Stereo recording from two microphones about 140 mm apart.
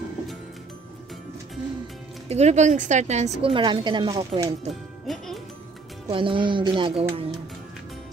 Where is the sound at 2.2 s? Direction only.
50° right (ahead or behind); by 4.2 s 35° right (ahead or behind).